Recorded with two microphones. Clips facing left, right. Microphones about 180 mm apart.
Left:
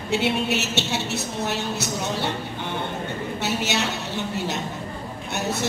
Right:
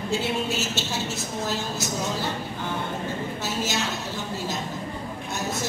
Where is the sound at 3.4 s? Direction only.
70° left (ahead or behind).